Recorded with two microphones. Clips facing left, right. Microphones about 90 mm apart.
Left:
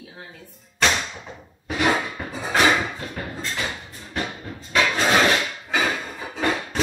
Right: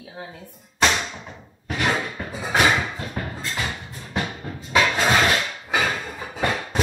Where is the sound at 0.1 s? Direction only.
20° right (ahead or behind).